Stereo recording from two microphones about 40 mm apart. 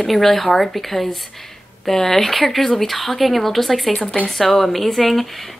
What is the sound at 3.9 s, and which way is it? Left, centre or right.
Speech, left.